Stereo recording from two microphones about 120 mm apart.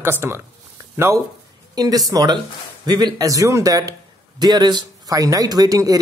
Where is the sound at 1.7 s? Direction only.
30° right (ahead or behind).